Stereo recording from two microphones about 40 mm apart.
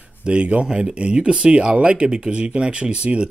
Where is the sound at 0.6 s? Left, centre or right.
Right.